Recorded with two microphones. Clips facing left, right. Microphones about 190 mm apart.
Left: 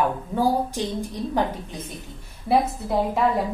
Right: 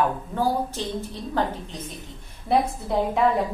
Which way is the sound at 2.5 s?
Centre (ahead or behind).